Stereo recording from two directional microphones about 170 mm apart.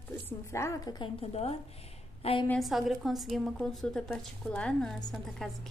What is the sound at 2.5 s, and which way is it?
A woman's voice, centre (ahead or behind).